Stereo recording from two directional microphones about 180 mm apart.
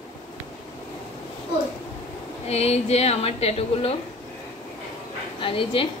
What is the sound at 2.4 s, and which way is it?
A woman's voice, 35° left (ahead or behind).